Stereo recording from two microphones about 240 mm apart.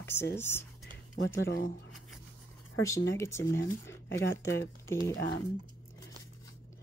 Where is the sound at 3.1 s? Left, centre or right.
Centre.